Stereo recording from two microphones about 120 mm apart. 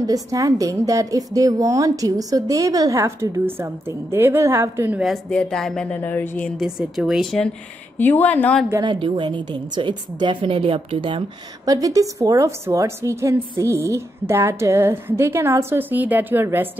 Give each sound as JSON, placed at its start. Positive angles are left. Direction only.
{"t": 0.0, "sound": "a woman's voice", "side_deg": -30}
{"t": 5.0, "sound": "speech", "side_deg": 5}
{"t": 5.9, "sound": "speech", "side_deg": 15}
{"t": 6.6, "sound": "speech", "side_deg": -5}
{"t": 8.0, "sound": "speech", "side_deg": 15}
{"t": 8.8, "sound": "a woman's voice", "side_deg": -40}
{"t": 11.6, "sound": "a woman's voice", "side_deg": -30}